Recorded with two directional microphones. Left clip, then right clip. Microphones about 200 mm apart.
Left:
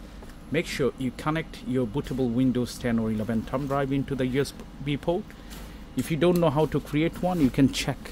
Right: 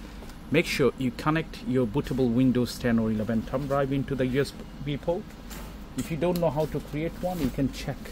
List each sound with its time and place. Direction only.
0.5 s speech: 10° right (ahead or behind); by 4.5 s 10° left (ahead or behind)
4.8 s speech: 30° left (ahead or behind)
6.0 s speech: 55° left (ahead or behind)
7.5 s speech: 45° left (ahead or behind)